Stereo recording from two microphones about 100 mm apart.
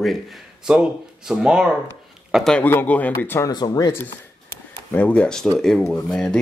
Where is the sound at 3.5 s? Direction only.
45° left (ahead or behind).